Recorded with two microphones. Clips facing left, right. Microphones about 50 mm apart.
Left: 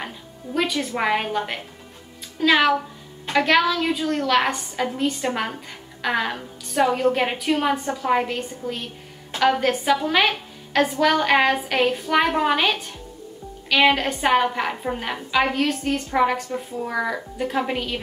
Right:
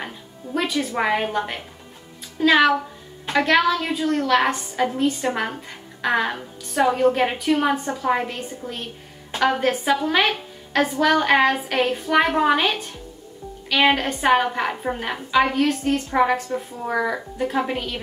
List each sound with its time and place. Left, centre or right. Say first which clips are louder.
0.9 s a woman's voice: even; centre
9.3 s a woman's voice: left 1 dB; centre